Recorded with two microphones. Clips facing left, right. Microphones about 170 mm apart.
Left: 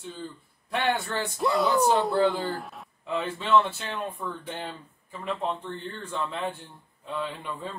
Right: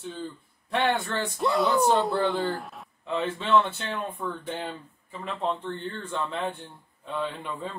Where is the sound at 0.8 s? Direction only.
Centre (ahead or behind).